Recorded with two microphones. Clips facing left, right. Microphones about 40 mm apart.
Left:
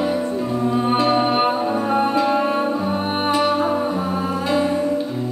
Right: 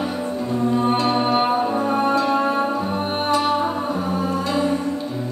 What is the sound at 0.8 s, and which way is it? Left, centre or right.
Music, centre.